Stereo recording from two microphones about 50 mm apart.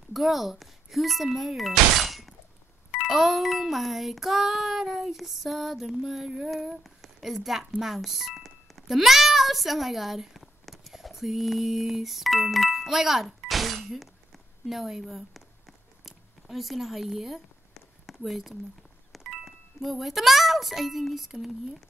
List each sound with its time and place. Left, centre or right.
0.1 s speech: centre
3.1 s music: centre
7.8 s a child's voice: centre
14.7 s a sound: centre
18.0 s speech: centre